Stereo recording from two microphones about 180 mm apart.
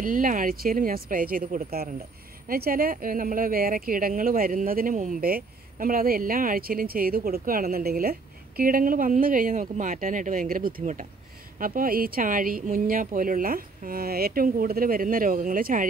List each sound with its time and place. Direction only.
0.0 s speech: 50° right (ahead or behind)